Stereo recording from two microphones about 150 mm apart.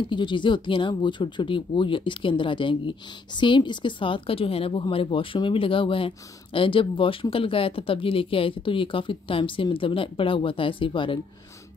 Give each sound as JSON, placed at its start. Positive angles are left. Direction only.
{"t": 0.0, "sound": "speech", "side_deg": 30}